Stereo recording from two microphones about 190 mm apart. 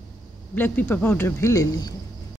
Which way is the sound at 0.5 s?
10° left (ahead or behind).